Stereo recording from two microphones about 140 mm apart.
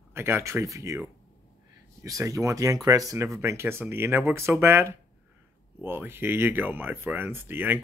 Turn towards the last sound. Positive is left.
turn(degrees=-15)  # may be behind; listen again after turning